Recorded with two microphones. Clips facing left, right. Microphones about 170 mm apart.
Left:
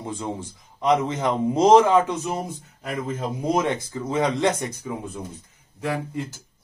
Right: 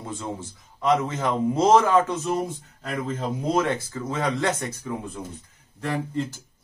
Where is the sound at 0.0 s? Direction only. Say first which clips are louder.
Left 2 dB; 15° left (ahead or behind).